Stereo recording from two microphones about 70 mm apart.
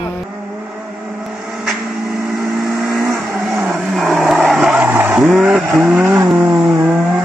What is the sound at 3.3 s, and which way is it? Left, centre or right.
Vehicle, centre.